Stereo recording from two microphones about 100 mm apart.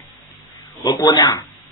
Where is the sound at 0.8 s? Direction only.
40° left (ahead or behind).